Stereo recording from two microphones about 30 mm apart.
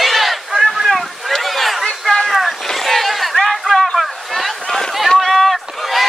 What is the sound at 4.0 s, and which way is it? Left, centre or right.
Boat, centre.